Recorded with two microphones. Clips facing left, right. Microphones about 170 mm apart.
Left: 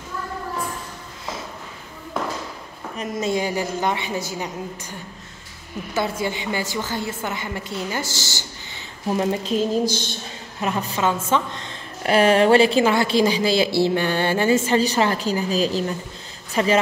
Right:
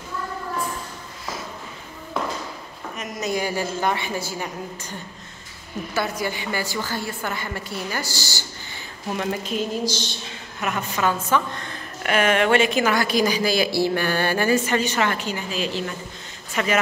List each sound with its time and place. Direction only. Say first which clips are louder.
3.0 s a woman's voice: left 3 dB; 25° left (ahead or behind)
5.9 s a woman's voice: left 2 dB; 25° left (ahead or behind)
9.8 s a woman's voice: left 2 dB; 55° left (ahead or behind)
10.6 s a woman's voice: left 2 dB; 30° left (ahead or behind)